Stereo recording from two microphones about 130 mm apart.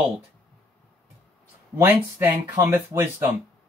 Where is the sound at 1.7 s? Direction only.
20° right (ahead or behind).